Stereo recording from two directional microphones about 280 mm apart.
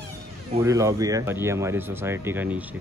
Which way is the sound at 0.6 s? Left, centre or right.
Centre.